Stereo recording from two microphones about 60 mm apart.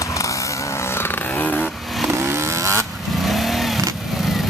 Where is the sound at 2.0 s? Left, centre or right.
Right.